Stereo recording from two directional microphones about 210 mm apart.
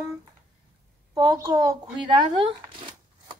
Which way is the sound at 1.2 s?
15° right (ahead or behind).